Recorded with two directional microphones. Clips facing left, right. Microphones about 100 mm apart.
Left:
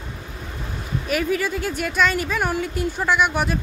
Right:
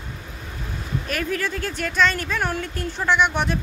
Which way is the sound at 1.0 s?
10° left (ahead or behind).